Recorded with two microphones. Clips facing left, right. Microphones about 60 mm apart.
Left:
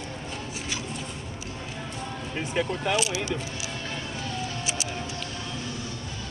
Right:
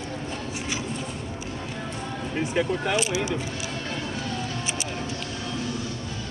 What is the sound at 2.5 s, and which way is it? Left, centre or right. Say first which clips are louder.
Speech: right 1 dB; right.